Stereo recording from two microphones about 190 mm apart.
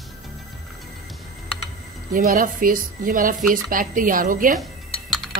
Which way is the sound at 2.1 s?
45° right (ahead or behind).